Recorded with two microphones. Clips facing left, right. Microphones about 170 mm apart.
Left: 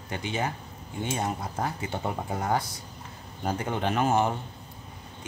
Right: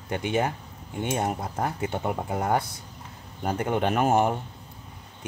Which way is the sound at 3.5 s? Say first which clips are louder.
Right 4 dB; 55° right (ahead or behind).